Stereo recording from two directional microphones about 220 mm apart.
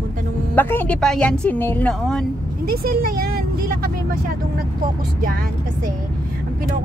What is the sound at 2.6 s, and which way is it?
Speech, 40° right (ahead or behind).